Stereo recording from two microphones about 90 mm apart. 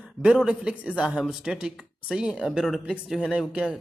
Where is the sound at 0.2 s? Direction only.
10° right (ahead or behind).